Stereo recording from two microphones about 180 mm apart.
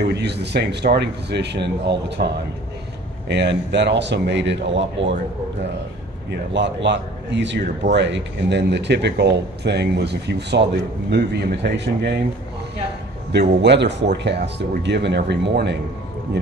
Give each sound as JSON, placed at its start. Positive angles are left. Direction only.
{"t": 0.1, "sound": "speech", "side_deg": -70}
{"t": 3.3, "sound": "speech", "side_deg": -70}
{"t": 6.5, "sound": "speech", "side_deg": -80}
{"t": 13.3, "sound": "speech", "side_deg": -70}